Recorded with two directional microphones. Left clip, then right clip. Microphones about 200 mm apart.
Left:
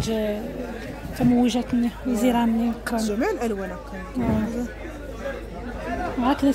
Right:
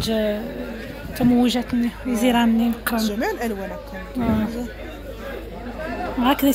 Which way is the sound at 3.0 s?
50° left (ahead or behind).